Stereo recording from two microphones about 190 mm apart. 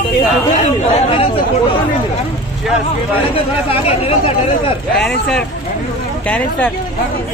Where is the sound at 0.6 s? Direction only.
35° left (ahead or behind).